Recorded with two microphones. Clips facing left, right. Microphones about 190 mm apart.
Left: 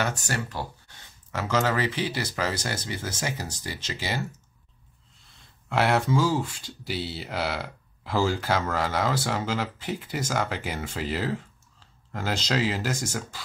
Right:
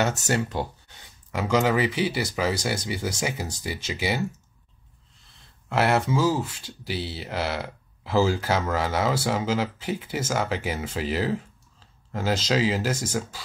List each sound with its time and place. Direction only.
0.0 s speech: 20° right (ahead or behind)
5.7 s speech: 5° right (ahead or behind)